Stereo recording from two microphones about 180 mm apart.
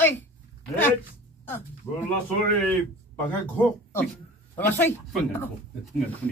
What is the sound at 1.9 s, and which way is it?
Speech, 20° left (ahead or behind).